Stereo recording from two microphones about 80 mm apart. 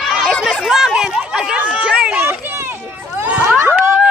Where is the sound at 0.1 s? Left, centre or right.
Centre.